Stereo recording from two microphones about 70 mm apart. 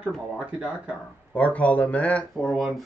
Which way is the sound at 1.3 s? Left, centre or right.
Centre.